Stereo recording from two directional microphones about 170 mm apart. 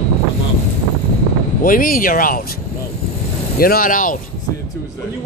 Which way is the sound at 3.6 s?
60° left (ahead or behind).